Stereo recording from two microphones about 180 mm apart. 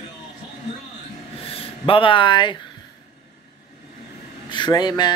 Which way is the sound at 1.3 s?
30° left (ahead or behind).